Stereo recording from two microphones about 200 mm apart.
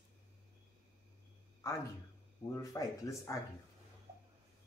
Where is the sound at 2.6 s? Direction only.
15° left (ahead or behind).